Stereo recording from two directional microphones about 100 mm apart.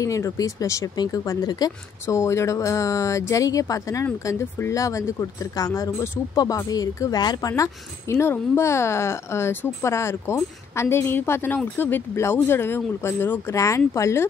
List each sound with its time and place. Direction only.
0.0 s speech: 35° left (ahead or behind)
2.1 s speech: 30° left (ahead or behind)
4.0 s speech: 25° left (ahead or behind)